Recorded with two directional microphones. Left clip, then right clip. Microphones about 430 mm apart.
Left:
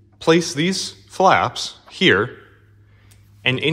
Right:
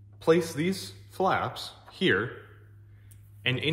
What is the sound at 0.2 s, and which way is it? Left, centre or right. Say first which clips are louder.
Speech: left 7 dB; centre.